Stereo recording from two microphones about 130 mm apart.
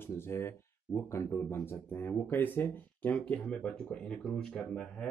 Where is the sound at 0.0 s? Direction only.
20° left (ahead or behind).